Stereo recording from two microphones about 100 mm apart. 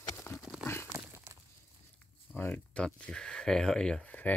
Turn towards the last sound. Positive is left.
turn(degrees=5)  # may be behind; listen again after turning